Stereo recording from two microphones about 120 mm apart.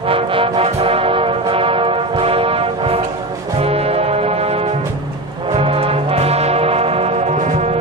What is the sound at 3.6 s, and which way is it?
Music, 55° right (ahead or behind).